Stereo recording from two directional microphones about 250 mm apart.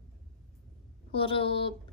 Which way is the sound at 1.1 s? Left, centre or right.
Left.